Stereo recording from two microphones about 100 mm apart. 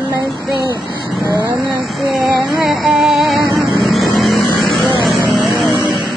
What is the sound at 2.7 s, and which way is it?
Music, centre (ahead or behind).